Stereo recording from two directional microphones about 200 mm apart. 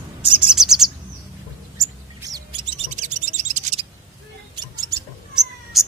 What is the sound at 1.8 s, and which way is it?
Bird, 15° right (ahead or behind).